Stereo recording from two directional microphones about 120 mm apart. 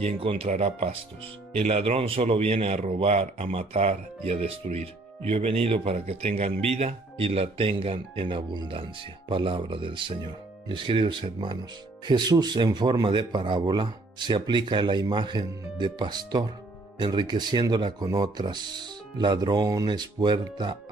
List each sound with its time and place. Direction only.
0.0 s a man's voice: 50° right (ahead or behind)